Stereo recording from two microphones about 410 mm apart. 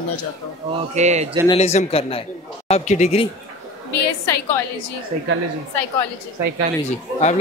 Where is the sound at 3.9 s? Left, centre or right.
Left.